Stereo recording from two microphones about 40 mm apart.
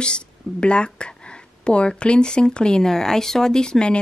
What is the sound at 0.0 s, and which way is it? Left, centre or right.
Speech, left.